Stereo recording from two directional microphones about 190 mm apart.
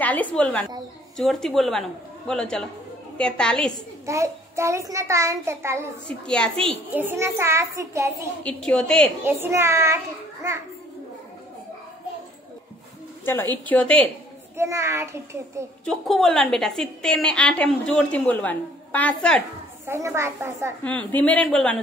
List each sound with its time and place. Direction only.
0.0 s a woman's voice: 10° left (ahead or behind)
4.0 s a child's voice: 15° right (ahead or behind)
6.2 s a woman's voice: 5° left (ahead or behind)
7.0 s a child's voice: 10° right (ahead or behind)
8.5 s a woman's voice: 5° left (ahead or behind)
9.2 s a child's voice: 10° right (ahead or behind)
13.2 s a woman's voice: 10° left (ahead or behind)
14.6 s a child's voice: 15° right (ahead or behind)
15.8 s a woman's voice: centre (ahead or behind)
19.9 s a child's voice: 15° right (ahead or behind)
20.8 s a woman's voice: 5° left (ahead or behind)